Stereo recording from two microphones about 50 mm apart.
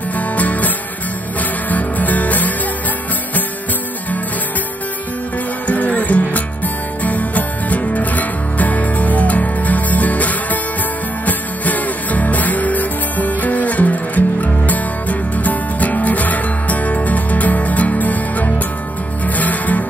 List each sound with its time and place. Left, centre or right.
0.1 s music: left
5.7 s music: left